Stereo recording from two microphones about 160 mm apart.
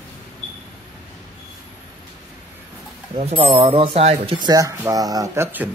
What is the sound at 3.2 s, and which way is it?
Speech, 40° right (ahead or behind).